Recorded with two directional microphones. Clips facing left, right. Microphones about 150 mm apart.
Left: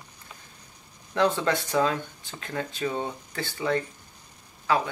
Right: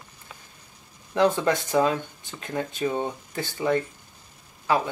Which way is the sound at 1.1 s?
15° right (ahead or behind).